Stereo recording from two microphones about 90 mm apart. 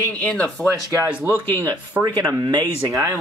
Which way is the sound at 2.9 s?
35° right (ahead or behind).